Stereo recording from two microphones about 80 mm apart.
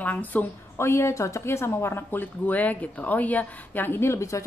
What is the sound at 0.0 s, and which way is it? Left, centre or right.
Speech, left.